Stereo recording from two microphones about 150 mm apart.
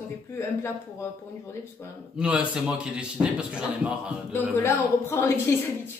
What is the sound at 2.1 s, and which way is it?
A man's voice, 10° right (ahead or behind).